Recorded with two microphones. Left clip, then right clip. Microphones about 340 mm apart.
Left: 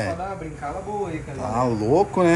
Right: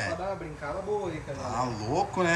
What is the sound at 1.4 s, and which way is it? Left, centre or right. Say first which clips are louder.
Speech: left 9 dB; centre.